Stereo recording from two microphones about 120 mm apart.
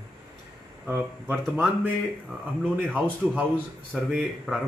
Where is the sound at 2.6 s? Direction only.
15° right (ahead or behind).